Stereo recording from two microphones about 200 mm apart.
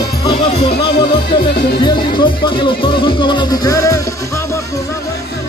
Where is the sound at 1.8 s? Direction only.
25° left (ahead or behind).